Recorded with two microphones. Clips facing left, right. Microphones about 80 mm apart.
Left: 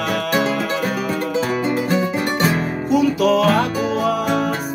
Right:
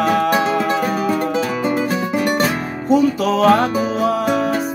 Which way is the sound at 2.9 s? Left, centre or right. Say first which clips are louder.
Right 1 dB; right.